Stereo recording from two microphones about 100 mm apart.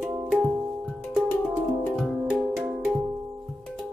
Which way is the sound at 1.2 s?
Centre (ahead or behind).